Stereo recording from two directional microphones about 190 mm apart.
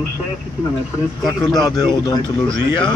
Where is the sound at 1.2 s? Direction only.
Centre (ahead or behind).